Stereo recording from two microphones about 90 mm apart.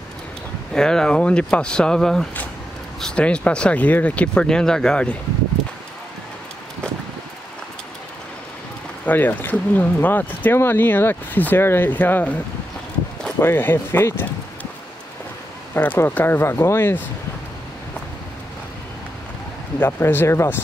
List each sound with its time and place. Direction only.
0.7 s speech: 10° left (ahead or behind)
9.0 s speech: 20° left (ahead or behind)
13.4 s speech: 25° left (ahead or behind)
15.7 s speech: 15° left (ahead or behind)
19.8 s speech: 25° left (ahead or behind)